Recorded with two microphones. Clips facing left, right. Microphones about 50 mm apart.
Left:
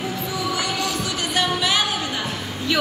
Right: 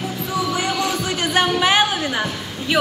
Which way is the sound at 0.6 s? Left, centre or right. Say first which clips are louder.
Right 3 dB; right.